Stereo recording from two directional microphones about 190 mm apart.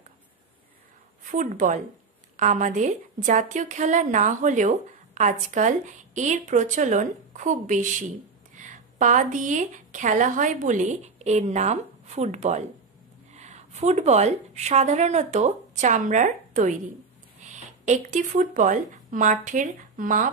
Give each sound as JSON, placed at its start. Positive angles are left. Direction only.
{"t": 1.2, "sound": "a woman's voice", "side_deg": -40}